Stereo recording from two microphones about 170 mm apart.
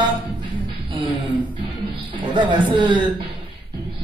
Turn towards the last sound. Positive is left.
turn(degrees=-25)  # may be behind; listen again after turning